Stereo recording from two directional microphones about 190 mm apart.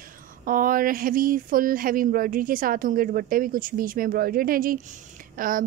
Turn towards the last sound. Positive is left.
turn(degrees=-45)  # may be behind; listen again after turning